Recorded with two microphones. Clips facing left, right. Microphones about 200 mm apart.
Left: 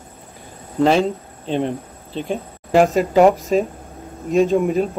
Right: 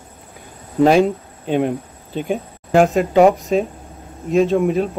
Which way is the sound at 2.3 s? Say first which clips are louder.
Right 1 dB; centre (ahead or behind).